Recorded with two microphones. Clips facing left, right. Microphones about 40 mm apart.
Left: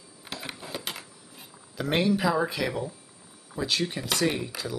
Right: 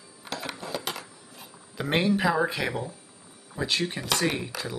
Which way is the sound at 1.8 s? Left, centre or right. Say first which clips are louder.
Even; centre.